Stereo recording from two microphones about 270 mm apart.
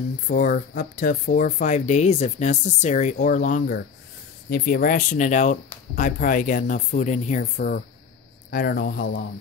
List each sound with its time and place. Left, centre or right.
0.3 s speech: left